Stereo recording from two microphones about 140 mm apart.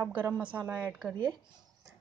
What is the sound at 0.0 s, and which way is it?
A woman's voice, 10° right (ahead or behind).